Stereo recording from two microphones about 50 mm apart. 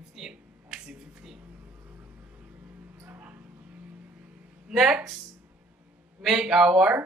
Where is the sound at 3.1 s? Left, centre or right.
Right.